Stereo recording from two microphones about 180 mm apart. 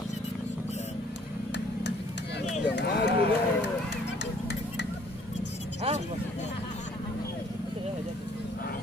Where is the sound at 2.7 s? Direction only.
70° left (ahead or behind).